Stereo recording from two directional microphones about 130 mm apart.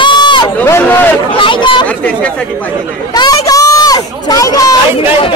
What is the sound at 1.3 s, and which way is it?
Speech, 40° left (ahead or behind).